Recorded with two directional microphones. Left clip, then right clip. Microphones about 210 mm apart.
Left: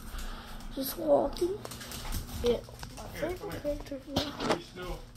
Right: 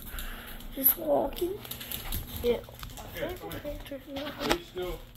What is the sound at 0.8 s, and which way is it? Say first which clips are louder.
Speech: left 1 dB; 5° right (ahead or behind).